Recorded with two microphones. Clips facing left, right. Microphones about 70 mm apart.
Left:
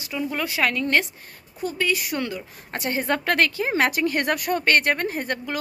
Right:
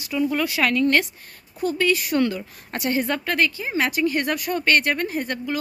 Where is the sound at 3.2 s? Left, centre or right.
Left.